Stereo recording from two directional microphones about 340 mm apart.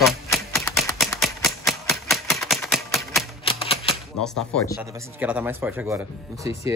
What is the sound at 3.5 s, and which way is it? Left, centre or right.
Typewriter, centre.